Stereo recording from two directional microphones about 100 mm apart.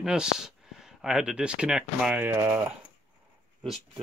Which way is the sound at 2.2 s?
20° right (ahead or behind).